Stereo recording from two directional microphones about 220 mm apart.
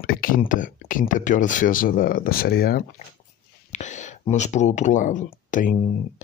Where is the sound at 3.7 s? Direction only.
30° left (ahead or behind).